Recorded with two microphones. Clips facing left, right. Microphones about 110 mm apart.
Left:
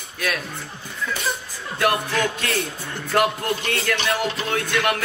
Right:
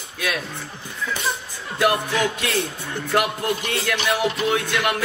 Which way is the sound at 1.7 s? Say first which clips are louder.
Right 1 dB; 20° right (ahead or behind).